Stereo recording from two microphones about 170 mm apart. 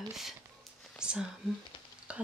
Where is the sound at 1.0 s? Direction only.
5° right (ahead or behind).